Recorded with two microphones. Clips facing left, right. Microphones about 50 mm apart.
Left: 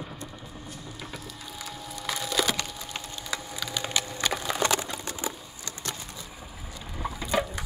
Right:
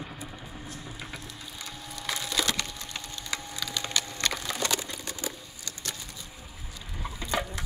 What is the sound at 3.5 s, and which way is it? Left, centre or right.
Splinter, centre.